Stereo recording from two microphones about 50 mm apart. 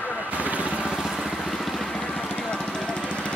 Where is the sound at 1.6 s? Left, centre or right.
Centre.